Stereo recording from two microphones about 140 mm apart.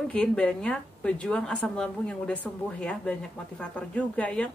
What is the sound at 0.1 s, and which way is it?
A woman's voice, 5° left (ahead or behind).